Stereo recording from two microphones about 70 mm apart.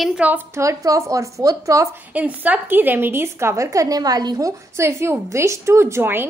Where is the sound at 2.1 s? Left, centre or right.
Right.